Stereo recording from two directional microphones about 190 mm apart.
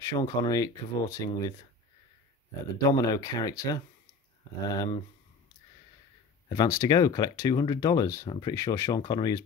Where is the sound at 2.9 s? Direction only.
20° left (ahead or behind).